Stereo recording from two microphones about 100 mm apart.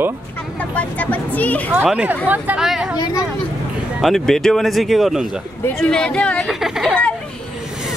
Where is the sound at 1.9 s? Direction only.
15° right (ahead or behind).